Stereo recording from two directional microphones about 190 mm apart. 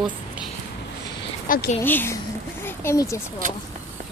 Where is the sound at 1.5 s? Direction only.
50° left (ahead or behind).